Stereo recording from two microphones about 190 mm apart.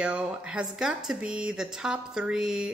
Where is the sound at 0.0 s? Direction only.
5° right (ahead or behind).